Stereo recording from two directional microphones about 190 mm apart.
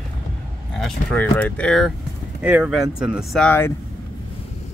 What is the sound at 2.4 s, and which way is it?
Speech, 10° right (ahead or behind).